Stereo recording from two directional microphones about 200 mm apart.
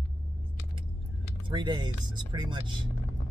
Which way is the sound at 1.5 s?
25° right (ahead or behind).